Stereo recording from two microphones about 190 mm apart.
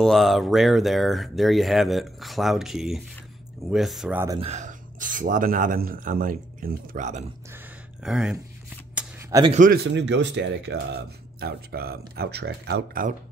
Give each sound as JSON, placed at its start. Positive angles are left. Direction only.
{"t": 0.0, "sound": "speech", "side_deg": 0}
{"t": 4.4, "sound": "speech", "side_deg": -35}
{"t": 7.5, "sound": "a sound", "side_deg": -5}
{"t": 9.5, "sound": "speech", "side_deg": -45}
{"t": 9.9, "sound": "speech", "side_deg": -70}